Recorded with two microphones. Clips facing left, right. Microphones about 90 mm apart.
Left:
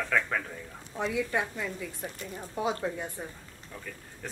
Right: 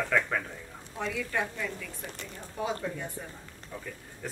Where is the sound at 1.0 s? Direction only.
20° left (ahead or behind).